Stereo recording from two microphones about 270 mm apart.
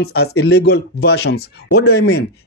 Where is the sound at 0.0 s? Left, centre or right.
Left.